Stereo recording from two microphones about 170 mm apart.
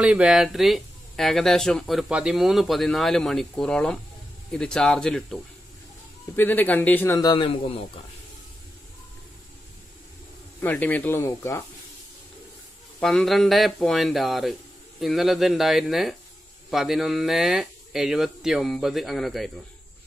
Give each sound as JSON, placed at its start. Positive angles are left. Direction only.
{"t": 0.0, "sound": "speech", "side_deg": -5}
{"t": 7.2, "sound": "a man's voice", "side_deg": 30}
{"t": 10.6, "sound": "speech", "side_deg": 10}
{"t": 13.0, "sound": "speech", "side_deg": 0}